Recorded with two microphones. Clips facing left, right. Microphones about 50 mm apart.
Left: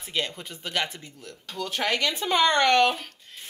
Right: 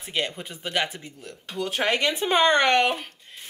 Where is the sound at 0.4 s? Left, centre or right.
Right.